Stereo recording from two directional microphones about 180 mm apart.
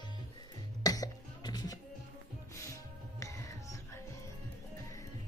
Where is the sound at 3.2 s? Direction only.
15° left (ahead or behind).